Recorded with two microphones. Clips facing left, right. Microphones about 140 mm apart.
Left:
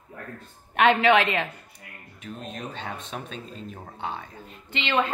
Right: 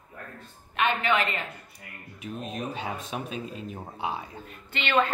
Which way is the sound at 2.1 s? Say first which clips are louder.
Right 2 dB; 5° right (ahead or behind).